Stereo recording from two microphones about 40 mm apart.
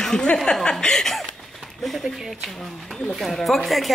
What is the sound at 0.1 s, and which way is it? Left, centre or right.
Speech, centre.